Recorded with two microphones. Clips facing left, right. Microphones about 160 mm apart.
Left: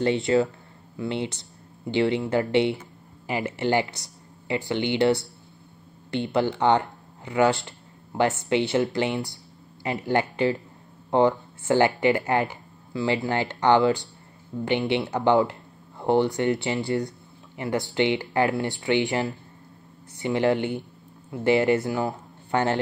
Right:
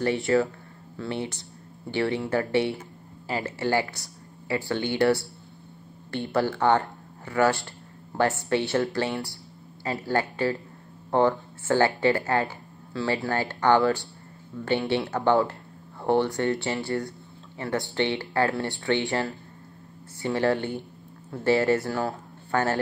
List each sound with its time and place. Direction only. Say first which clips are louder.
0.0 s speech: left 2 dB; 20° left (ahead or behind)